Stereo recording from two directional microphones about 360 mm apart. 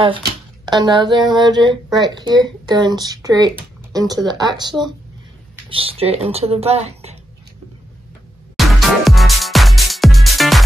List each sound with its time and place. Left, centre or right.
0.7 s speech: centre
8.5 s music: centre